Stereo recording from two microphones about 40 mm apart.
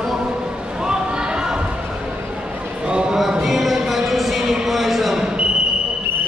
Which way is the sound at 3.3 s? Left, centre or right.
Centre.